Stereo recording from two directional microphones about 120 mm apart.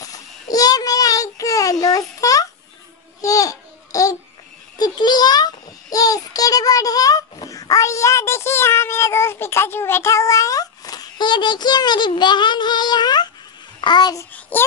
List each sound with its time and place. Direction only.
0.0 s child singing: 30° left (ahead or behind)
3.2 s babbling: 30° left (ahead or behind)
4.7 s a child's voice: 35° left (ahead or behind)
14.5 s a child's voice: 15° left (ahead or behind)